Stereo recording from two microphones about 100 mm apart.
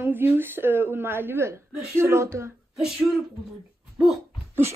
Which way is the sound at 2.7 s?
5° right (ahead or behind).